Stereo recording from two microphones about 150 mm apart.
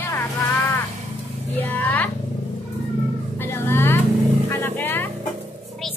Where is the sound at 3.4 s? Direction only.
15° left (ahead or behind).